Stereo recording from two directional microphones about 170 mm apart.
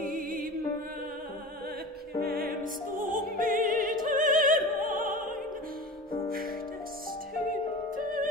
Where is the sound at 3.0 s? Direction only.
55° right (ahead or behind).